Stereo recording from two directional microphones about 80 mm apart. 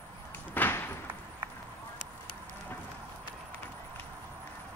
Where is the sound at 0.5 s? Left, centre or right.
Left.